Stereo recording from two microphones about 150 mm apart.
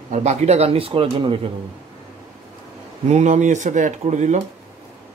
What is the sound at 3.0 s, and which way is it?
Speech, 50° right (ahead or behind).